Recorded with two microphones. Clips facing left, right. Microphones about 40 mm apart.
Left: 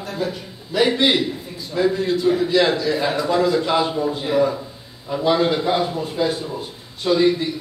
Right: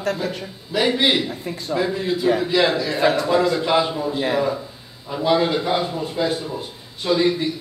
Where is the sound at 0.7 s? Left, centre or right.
Centre.